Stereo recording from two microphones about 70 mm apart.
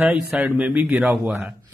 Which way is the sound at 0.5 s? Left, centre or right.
Right.